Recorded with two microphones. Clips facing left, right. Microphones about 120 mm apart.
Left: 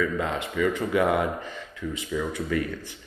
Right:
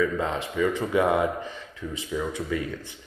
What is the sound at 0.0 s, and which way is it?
Speech, 25° right (ahead or behind).